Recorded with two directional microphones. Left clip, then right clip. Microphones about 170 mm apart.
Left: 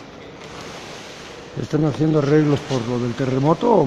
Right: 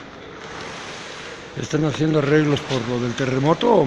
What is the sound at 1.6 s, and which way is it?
Speech, 25° left (ahead or behind).